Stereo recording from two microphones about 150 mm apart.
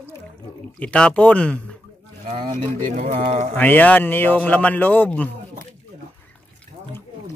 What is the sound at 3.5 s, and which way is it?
Speech, 10° left (ahead or behind).